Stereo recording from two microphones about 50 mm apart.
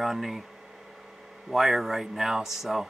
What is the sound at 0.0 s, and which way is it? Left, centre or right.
Speech, centre.